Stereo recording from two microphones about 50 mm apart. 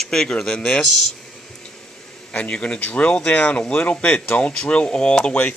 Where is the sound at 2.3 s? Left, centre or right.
Left.